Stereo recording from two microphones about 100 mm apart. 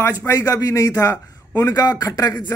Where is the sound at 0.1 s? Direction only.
35° left (ahead or behind).